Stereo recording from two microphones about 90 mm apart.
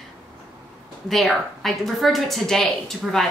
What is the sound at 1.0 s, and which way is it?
A woman's voice, centre (ahead or behind).